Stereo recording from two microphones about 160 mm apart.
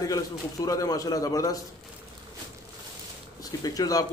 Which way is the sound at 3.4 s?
25° left (ahead or behind).